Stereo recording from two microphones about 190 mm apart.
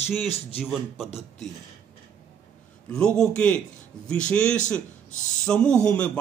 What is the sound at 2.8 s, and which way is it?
A man's voice, 5° left (ahead or behind).